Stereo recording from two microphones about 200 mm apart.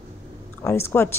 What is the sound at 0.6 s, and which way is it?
Speech, 10° left (ahead or behind).